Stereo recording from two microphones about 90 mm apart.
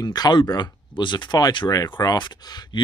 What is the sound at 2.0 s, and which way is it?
Speech, 45° left (ahead or behind).